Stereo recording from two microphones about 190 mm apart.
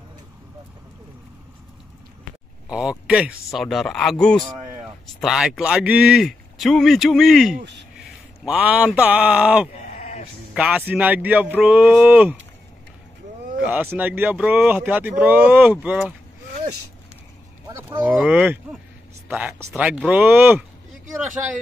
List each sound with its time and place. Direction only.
2.7 s a man's voice: 5° right (ahead or behind)
9.9 s sheep: 40° left (ahead or behind)
10.5 s speech: 5° right (ahead or behind)
13.6 s speech: 10° right (ahead or behind)
17.8 s speech: 10° right (ahead or behind)